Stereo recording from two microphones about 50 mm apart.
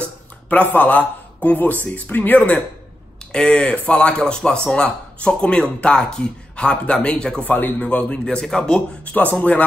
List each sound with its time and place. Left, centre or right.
0.0 s a sound: left
0.7 s a man's voice: left
3.3 s speech: centre
7.4 s speech: left; by 8.8 s centre
9.0 s speech: left